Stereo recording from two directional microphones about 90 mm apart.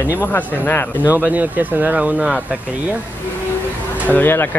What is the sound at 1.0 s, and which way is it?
Speech, 20° right (ahead or behind).